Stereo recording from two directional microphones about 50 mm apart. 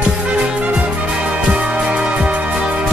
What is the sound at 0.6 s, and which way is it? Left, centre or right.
Music, right.